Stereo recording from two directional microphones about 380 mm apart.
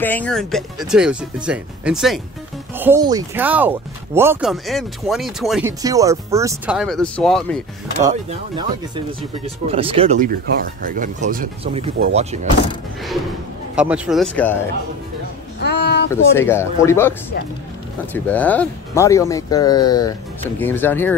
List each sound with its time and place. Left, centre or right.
0.0 s speech: centre
8.1 s speech: centre
13.7 s speech: centre
15.6 s a sound: left
16.1 s speech: centre
18.1 s speech: centre